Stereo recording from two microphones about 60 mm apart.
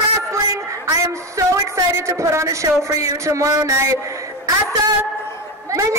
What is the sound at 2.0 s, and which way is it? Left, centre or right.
Speech, right.